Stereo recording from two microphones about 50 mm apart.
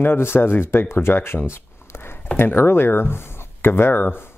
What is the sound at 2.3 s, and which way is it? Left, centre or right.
Speech, left.